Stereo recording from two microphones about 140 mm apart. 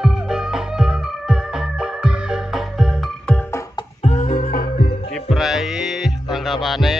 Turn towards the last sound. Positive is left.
turn(degrees=0)  # may be behind; listen again after turning